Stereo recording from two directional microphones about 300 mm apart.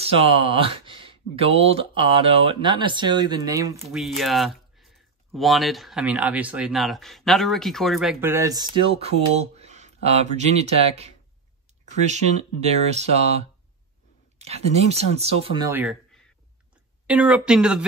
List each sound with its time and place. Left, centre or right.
0.0 s speech: centre